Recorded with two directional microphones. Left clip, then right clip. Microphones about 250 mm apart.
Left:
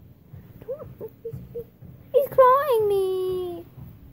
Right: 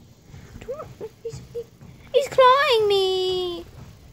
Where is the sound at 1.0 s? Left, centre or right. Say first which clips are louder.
Right 2 dB; centre.